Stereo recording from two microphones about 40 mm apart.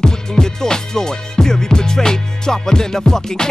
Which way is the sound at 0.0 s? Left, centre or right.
Centre.